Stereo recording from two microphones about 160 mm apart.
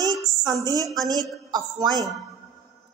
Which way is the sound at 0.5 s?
25° right (ahead or behind).